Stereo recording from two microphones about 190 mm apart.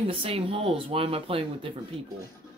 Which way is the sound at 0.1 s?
30° right (ahead or behind).